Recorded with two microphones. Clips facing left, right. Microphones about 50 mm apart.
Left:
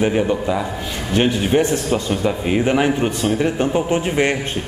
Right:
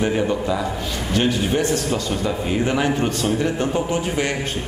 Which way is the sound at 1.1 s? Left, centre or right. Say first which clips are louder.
Left 4 dB; left.